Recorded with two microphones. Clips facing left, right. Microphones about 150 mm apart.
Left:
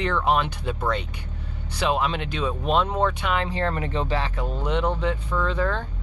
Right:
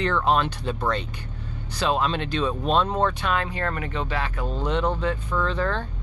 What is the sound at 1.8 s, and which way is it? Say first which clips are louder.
Speech: even; 15° left (ahead or behind).